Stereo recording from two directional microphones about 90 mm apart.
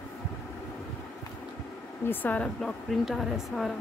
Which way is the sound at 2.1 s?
20° left (ahead or behind).